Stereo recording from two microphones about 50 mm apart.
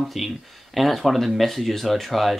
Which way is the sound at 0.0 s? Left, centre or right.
Centre.